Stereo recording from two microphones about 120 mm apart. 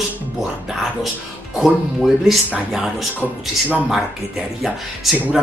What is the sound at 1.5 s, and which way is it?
Speech, centre (ahead or behind).